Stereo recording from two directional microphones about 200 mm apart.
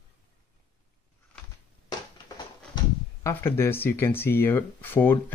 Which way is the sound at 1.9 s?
20° left (ahead or behind).